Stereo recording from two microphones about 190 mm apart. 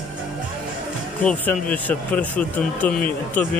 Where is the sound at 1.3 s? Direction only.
5° left (ahead or behind).